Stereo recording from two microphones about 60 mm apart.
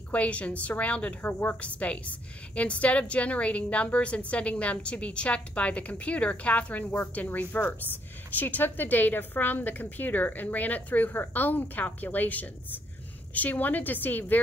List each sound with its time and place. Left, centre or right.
0.1 s a woman's voice: left